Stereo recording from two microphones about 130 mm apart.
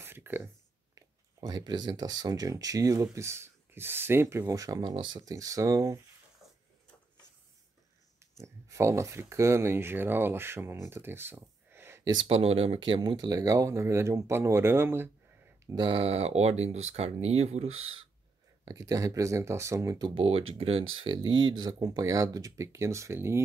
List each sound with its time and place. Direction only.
0.0 s a sound: 15° right (ahead or behind)
0.9 s speech: 35° right (ahead or behind)
8.6 s speech: 20° right (ahead or behind)
12.3 s speech: 45° right (ahead or behind); by 15.0 s 15° right (ahead or behind)
15.7 s speech: 40° right (ahead or behind)
18.7 s speech: 25° right (ahead or behind)
20.2 s speech: 45° right (ahead or behind); by 23.4 s 20° right (ahead or behind)